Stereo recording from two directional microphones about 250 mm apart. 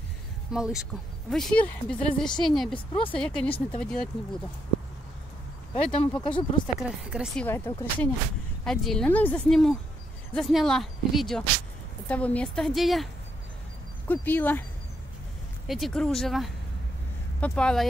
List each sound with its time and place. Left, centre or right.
0.5 s speech: centre
2.7 s speech: left
3.1 s speech: centre
5.9 s speech: centre
15.6 s speech: centre